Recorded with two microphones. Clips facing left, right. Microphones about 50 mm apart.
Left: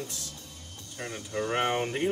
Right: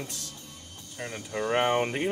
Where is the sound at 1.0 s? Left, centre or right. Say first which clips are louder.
Right 1 dB; centre.